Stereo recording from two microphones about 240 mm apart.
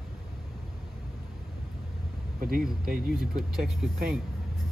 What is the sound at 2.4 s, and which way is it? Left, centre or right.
Speech, right.